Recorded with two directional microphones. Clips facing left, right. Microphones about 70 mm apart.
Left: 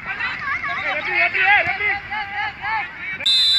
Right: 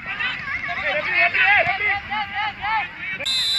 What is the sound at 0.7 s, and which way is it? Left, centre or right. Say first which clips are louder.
Vehicle: even; centre.